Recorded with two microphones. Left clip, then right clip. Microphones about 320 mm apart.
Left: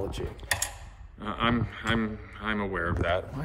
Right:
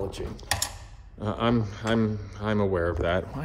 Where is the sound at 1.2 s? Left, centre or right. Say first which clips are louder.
Right 2 dB; centre.